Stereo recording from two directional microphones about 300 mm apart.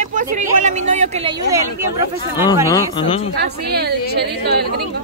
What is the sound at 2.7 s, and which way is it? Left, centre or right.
Speech, centre.